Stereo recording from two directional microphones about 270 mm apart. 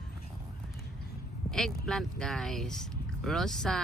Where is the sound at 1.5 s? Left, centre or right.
Centre.